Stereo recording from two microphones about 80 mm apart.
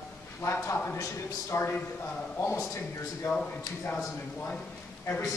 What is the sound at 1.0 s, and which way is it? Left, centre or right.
A man's voice, left.